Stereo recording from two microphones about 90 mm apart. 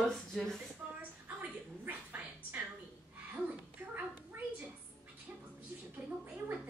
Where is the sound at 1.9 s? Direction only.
20° right (ahead or behind).